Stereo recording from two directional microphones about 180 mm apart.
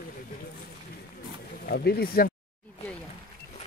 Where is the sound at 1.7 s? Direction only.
60° left (ahead or behind).